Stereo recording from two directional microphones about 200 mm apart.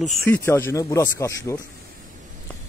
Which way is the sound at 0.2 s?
10° left (ahead or behind).